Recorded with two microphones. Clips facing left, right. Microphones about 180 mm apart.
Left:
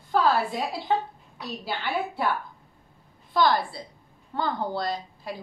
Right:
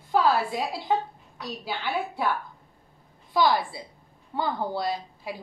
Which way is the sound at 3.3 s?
5° right (ahead or behind).